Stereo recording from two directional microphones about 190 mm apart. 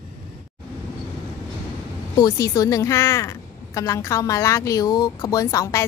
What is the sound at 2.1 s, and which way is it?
A woman's voice, 20° left (ahead or behind).